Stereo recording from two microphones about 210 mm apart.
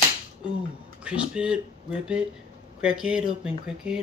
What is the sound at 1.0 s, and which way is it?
Speech, 5° right (ahead or behind).